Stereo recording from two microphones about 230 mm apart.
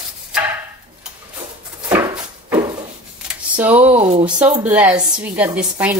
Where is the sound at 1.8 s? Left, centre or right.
Centre.